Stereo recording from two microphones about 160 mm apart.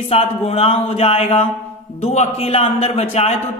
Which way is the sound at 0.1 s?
40° left (ahead or behind).